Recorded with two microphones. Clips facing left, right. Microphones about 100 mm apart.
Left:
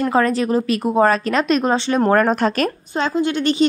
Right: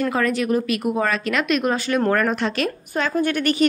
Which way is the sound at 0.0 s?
35° left (ahead or behind).